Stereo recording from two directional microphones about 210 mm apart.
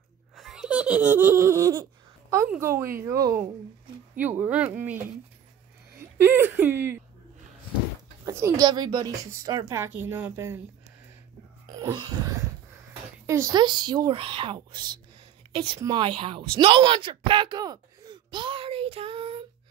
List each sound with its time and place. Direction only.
0.4 s laughter: centre (ahead or behind)
2.3 s a woman's voice: 10° right (ahead or behind)
5.9 s speech: 10° right (ahead or behind)
8.3 s a woman's voice: 10° right (ahead or behind)
11.8 s a woman's voice: 15° right (ahead or behind)